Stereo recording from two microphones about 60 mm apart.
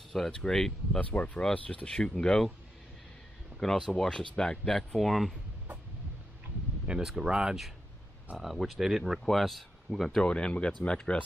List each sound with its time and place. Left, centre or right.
0.1 s speech: centre
0.9 s speech: left
3.5 s speech: centre
6.9 s speech: centre
10.2 s speech: centre